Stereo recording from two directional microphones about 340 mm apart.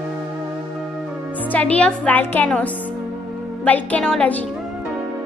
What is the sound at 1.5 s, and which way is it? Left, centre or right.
A woman's voice, centre.